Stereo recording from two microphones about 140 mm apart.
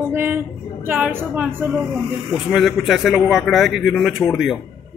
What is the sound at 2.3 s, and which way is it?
A man's voice, centre (ahead or behind).